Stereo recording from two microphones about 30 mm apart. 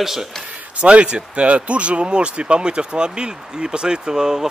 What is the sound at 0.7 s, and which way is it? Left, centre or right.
Speech, right.